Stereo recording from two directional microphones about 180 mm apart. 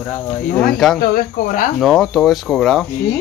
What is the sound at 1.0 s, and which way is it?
Speech, 55° left (ahead or behind).